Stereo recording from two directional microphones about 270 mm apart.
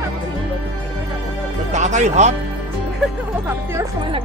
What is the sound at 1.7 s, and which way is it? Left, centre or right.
Speech, right.